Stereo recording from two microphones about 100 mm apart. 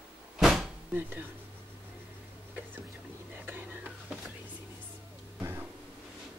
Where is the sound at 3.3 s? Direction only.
15° right (ahead or behind).